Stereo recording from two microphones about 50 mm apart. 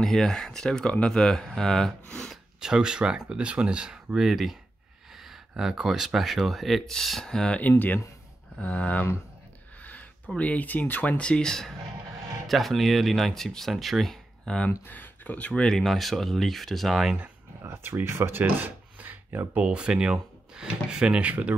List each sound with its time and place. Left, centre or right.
0.0 s speech: centre
2.6 s speech: centre
8.5 s speech: left
10.3 s speech: left; by 11.7 s centre
12.4 s speech: centre
14.4 s speech: centre
14.9 s speech: left
15.6 s speech: centre
17.6 s speech: right
18.3 s a sound: right
19.6 s speech: centre